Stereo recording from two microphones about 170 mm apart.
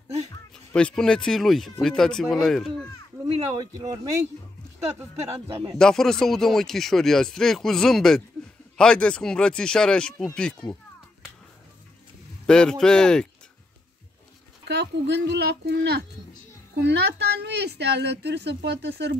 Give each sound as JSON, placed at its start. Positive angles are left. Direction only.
{"t": 0.7, "sound": "speech", "side_deg": 5}
{"t": 3.7, "sound": "speech", "side_deg": -20}
{"t": 5.8, "sound": "speech", "side_deg": 5}
{"t": 12.4, "sound": "speech", "side_deg": 5}
{"t": 14.6, "sound": "a woman's voice", "side_deg": -80}